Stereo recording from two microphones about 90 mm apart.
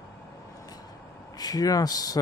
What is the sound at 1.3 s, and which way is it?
Speech, 45° left (ahead or behind).